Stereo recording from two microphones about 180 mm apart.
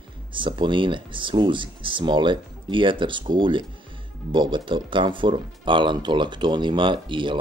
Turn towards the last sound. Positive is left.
turn(degrees=-25)  # may be behind; listen again after turning